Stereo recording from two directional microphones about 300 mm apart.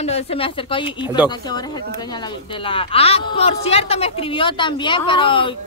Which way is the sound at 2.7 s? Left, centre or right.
Centre.